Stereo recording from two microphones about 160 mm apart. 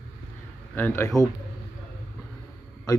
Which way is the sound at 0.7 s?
15° left (ahead or behind).